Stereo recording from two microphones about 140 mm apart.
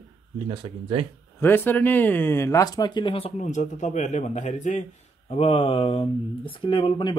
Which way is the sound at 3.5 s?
60° left (ahead or behind).